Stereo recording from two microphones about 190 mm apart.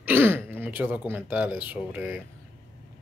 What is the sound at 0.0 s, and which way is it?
Speech, 10° right (ahead or behind).